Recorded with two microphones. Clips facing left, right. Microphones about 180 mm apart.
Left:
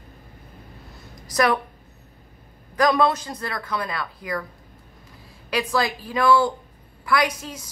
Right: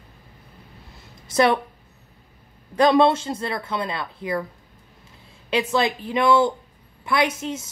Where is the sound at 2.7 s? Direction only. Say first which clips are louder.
Right 3 dB; 25° right (ahead or behind).